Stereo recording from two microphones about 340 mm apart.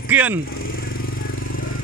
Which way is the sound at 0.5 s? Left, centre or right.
Left.